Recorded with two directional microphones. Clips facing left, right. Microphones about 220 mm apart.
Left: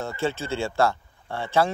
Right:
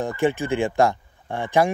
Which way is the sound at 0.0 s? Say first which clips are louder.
Right 6 dB; 15° right (ahead or behind).